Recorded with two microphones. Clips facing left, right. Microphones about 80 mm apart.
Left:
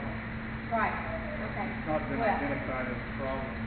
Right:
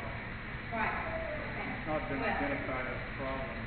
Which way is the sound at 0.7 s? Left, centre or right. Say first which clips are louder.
Left 6 dB; left.